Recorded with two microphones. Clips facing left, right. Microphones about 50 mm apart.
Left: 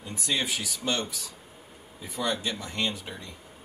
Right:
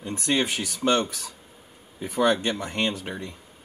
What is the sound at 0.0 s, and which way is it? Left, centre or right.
Speech, right.